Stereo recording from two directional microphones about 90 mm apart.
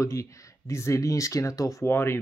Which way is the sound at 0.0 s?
35° left (ahead or behind).